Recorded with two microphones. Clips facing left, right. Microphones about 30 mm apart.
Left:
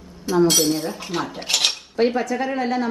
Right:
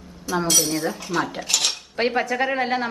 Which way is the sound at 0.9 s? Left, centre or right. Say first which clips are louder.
Right 2 dB; left.